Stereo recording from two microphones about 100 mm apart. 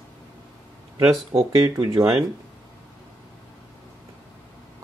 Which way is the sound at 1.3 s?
55° right (ahead or behind).